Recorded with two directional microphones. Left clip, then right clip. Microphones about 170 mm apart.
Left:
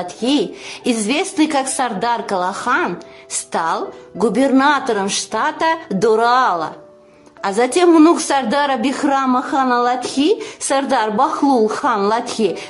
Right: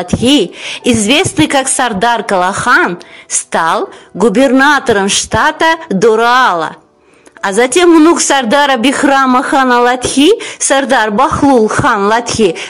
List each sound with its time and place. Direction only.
0.0 s a woman's voice: 25° right (ahead or behind)